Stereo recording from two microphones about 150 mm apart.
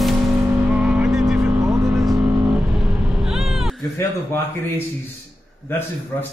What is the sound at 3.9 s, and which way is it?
A man's voice, 15° left (ahead or behind).